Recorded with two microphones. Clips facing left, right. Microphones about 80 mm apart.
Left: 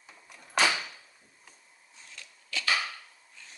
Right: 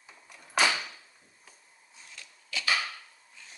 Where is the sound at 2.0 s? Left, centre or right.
Centre.